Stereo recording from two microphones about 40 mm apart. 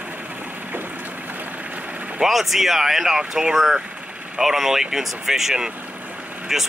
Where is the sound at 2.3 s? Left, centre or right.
Centre.